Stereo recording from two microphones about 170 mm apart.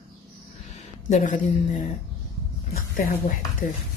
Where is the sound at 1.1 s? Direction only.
45° left (ahead or behind).